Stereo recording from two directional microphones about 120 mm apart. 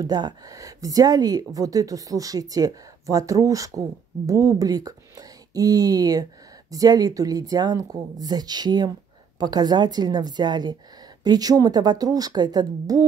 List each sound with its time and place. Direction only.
0.0 s speech: 30° right (ahead or behind)